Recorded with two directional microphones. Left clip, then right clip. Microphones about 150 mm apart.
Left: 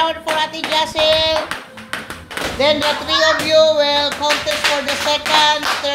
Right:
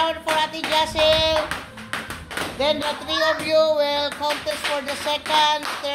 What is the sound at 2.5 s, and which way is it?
Speech, 20° right (ahead or behind).